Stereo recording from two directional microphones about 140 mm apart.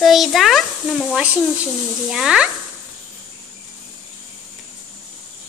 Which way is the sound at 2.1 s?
5° right (ahead or behind).